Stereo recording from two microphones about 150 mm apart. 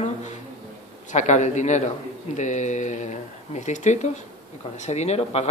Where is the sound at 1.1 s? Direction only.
50° left (ahead or behind).